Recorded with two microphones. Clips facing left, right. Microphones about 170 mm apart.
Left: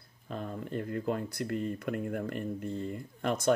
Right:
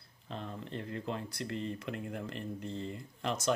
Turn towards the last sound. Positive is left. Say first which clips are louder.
# left 5 dB
turn(degrees=50)  # may be behind; listen again after turning